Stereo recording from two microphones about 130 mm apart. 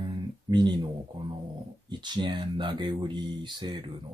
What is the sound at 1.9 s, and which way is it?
Speech, 35° right (ahead or behind).